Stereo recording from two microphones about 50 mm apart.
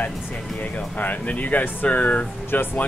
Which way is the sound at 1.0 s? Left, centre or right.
Left.